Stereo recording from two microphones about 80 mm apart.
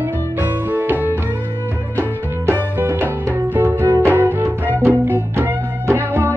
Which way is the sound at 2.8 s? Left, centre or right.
Right.